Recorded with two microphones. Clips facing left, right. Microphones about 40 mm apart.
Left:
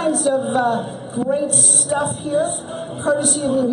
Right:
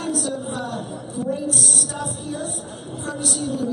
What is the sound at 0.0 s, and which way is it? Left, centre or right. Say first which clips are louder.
A man's voice: left 8 dB; left.